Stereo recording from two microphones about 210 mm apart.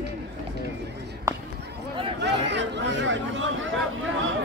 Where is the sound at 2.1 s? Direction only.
55° right (ahead or behind).